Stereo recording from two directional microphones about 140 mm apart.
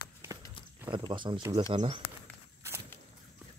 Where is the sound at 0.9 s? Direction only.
35° right (ahead or behind).